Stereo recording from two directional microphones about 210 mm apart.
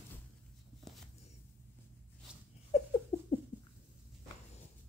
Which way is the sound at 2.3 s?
5° right (ahead or behind).